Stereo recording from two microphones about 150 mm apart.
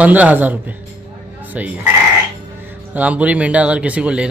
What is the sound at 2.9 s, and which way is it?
Speech, 10° right (ahead or behind).